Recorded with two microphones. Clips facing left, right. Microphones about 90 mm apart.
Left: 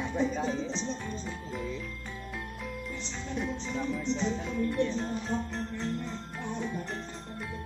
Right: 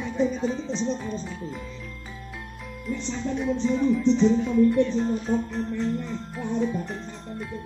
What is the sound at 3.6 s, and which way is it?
Music, 5° left (ahead or behind).